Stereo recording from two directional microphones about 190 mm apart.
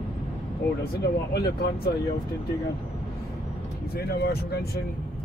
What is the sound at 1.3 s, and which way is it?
Speech, 55° left (ahead or behind).